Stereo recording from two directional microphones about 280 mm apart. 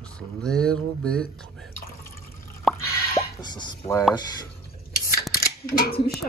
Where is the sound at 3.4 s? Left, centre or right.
Centre.